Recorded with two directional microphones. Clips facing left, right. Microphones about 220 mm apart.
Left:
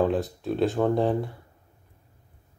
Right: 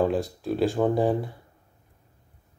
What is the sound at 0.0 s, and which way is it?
Speech, centre (ahead or behind).